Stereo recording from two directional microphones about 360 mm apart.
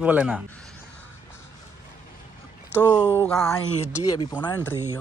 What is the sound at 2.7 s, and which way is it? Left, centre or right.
Speech, centre.